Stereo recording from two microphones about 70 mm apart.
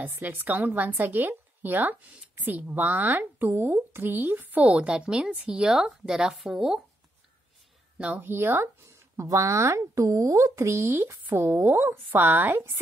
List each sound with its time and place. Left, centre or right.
0.0 s a woman's voice: right; by 6.8 s centre
8.0 s a woman's voice: right
9.1 s speech: right
10.8 s a woman's voice: right